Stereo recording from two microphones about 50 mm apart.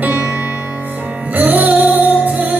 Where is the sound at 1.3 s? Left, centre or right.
Right.